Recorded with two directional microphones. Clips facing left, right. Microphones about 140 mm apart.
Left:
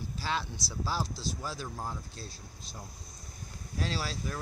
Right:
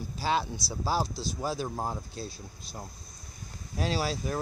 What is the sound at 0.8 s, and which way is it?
Speech, 45° right (ahead or behind).